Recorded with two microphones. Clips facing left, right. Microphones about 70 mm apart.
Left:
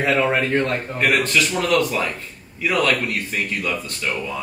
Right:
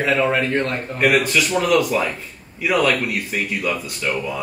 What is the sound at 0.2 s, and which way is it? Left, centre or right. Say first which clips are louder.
Speech: even; centre.